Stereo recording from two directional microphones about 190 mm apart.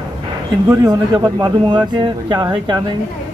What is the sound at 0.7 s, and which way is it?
Speech, 20° right (ahead or behind).